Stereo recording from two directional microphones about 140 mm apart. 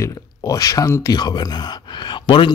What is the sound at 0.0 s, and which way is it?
Speech, 25° left (ahead or behind).